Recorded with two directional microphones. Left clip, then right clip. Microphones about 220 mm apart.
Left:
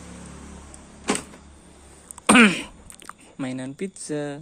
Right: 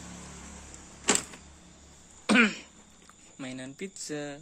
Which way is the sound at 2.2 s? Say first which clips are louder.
Left 8 dB; 50° left (ahead or behind).